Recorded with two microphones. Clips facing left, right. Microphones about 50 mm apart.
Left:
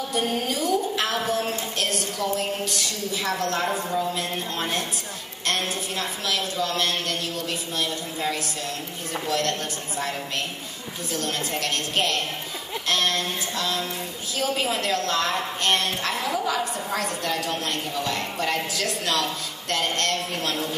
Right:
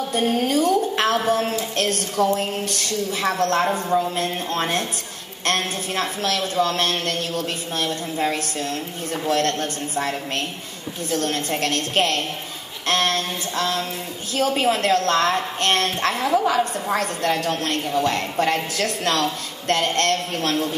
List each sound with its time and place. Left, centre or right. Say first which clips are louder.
0.1 s music: right 6 dB; right
1.8 s a woman's voice: right 8 dB; right
12.8 s a sound: right 4 dB; right
14.3 s a woman's voice: right 6 dB; right